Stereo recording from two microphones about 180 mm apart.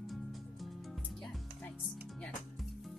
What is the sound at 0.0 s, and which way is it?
Music, centre (ahead or behind).